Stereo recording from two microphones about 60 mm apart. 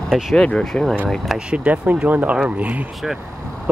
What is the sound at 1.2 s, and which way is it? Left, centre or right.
Speech, centre.